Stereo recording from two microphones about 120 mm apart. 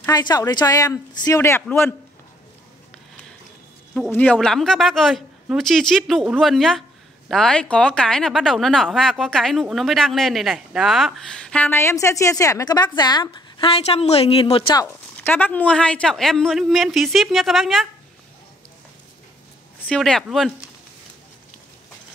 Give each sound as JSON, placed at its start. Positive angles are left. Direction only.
{"t": 0.1, "sound": "speech", "side_deg": 35}
{"t": 4.1, "sound": "speech", "side_deg": 15}
{"t": 15.2, "sound": "speech", "side_deg": 15}
{"t": 19.9, "sound": "speech", "side_deg": 5}